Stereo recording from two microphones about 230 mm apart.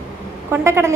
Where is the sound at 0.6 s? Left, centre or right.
Centre.